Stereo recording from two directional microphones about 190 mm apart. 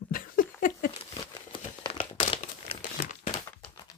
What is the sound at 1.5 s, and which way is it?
Crumpling, 25° left (ahead or behind).